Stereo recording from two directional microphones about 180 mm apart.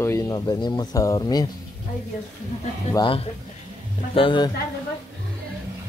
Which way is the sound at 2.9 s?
30° left (ahead or behind).